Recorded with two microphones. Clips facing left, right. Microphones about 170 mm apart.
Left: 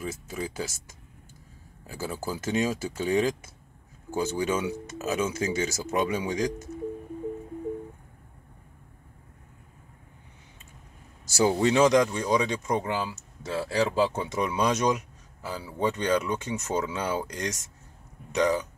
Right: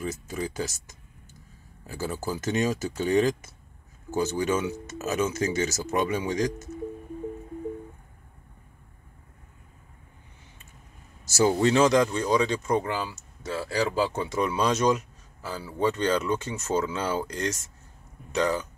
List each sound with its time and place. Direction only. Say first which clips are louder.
0.0 s speech: right 2 dB; 10° left (ahead or behind)
11.2 s speech: right 1 dB; 15° left (ahead or behind)